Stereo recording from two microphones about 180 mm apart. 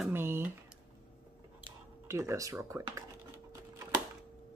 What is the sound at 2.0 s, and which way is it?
Speech, 15° right (ahead or behind).